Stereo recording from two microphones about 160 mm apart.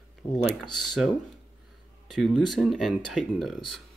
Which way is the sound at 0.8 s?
Centre (ahead or behind).